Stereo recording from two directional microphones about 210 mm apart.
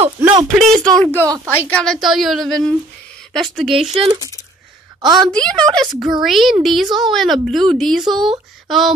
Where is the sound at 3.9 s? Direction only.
25° right (ahead or behind).